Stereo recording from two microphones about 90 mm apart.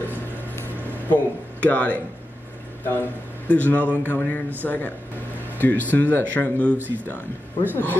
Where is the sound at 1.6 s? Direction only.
15° left (ahead or behind).